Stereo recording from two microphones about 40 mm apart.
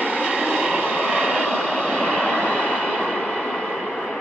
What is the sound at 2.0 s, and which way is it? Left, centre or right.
Vehicle, left.